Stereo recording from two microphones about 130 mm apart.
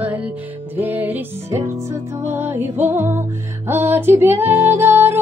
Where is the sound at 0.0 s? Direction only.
10° right (ahead or behind).